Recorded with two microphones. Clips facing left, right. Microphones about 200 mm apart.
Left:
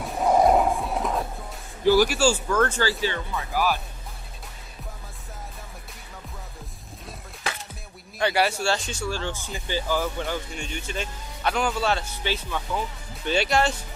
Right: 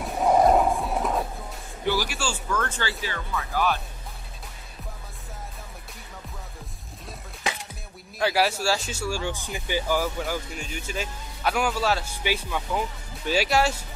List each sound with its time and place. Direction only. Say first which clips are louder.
0.0 s music: even; centre (ahead or behind)
2.0 s speech: left 9 dB; 40° left (ahead or behind); by 3.6 s 15° left (ahead or behind)
8.2 s speech: even; centre (ahead or behind)